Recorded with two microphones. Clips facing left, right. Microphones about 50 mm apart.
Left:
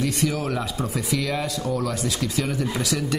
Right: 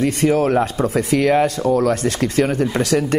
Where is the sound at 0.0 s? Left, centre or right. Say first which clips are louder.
Right 8 dB; right.